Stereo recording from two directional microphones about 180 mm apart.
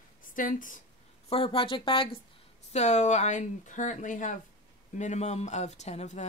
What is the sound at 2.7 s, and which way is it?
Speech, 40° left (ahead or behind).